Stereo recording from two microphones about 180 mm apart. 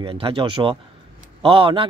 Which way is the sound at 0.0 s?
30° right (ahead or behind).